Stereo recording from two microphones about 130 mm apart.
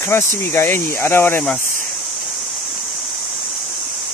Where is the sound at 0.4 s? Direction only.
15° left (ahead or behind).